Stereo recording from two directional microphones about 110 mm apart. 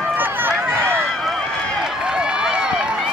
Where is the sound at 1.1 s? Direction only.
Centre (ahead or behind).